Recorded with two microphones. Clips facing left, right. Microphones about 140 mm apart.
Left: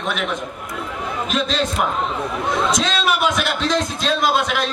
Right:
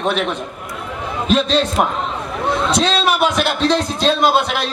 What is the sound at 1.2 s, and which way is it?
A man's voice, 30° right (ahead or behind).